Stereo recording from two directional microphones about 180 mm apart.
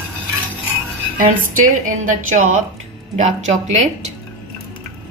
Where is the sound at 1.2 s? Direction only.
50° right (ahead or behind).